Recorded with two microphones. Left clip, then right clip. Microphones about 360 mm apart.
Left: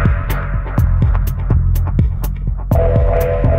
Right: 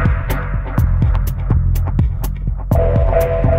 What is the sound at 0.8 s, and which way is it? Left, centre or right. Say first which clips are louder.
Music: left 1 dB; centre.